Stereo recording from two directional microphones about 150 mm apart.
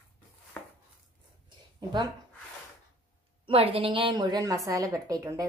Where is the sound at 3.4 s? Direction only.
40° right (ahead or behind).